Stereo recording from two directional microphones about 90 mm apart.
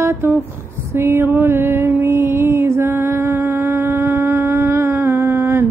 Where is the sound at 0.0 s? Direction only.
25° right (ahead or behind).